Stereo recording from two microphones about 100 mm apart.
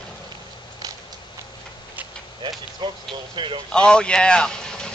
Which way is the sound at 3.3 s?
55° right (ahead or behind).